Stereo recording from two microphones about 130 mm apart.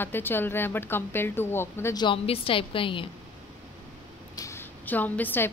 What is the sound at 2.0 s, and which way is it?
A woman's voice, 40° left (ahead or behind).